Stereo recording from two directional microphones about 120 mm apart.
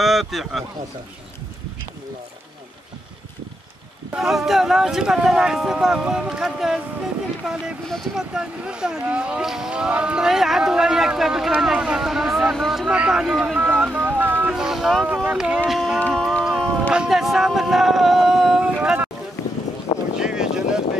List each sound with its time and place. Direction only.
0.0 s speech: centre (ahead or behind)
4.1 s speech: 5° right (ahead or behind)
14.0 s a sound: 15° right (ahead or behind)
14.5 s speech: 5° right (ahead or behind)
15.7 s a sound: centre (ahead or behind)
20.2 s boat: 5° right (ahead or behind)